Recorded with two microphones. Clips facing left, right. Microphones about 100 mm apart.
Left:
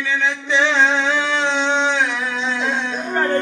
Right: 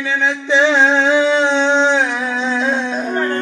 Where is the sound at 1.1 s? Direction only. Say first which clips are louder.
Right 6 dB; 10° right (ahead or behind).